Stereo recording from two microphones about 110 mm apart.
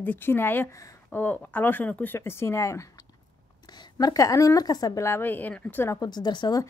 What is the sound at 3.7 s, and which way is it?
Speech, 40° left (ahead or behind).